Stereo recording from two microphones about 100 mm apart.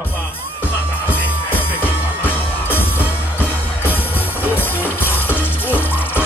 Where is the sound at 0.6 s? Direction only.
20° left (ahead or behind).